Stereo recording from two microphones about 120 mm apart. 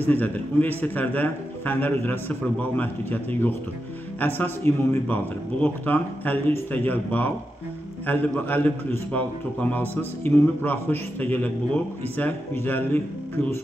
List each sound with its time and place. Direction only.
0.0 s a man's voice: 15° left (ahead or behind)